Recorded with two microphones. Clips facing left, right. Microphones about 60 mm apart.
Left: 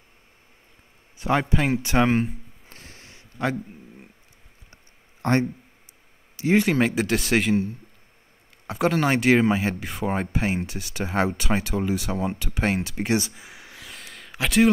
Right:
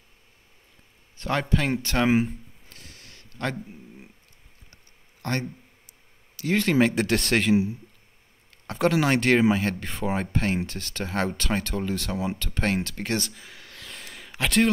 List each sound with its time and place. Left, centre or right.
1.1 s speech: centre
2.0 s speech: centre
2.7 s a sound: left
5.2 s a man's voice: left
6.7 s speech: centre
8.6 s speech: centre